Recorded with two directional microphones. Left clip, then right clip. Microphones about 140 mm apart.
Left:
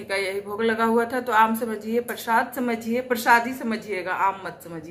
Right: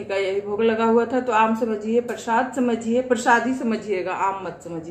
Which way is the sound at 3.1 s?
25° left (ahead or behind).